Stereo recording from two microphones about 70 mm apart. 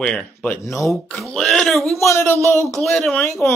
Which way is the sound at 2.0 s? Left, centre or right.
Left.